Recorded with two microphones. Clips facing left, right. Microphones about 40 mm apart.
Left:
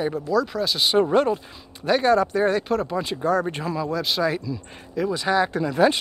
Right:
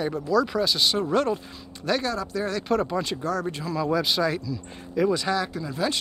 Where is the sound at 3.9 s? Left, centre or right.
Centre.